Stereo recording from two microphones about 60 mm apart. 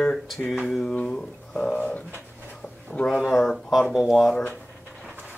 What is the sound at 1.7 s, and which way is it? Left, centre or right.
Bird, left.